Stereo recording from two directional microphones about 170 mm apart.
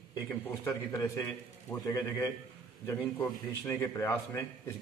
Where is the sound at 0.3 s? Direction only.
10° left (ahead or behind).